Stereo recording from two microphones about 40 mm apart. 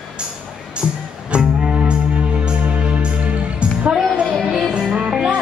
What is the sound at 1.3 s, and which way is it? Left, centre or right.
Music, right.